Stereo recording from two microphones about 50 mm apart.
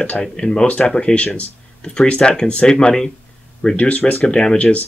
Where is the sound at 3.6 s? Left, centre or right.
Left.